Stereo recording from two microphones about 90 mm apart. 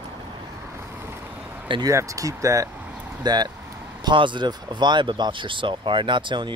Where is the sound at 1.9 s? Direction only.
40° right (ahead or behind).